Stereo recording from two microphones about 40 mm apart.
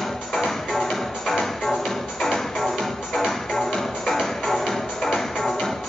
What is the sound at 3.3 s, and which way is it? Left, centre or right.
Music, centre.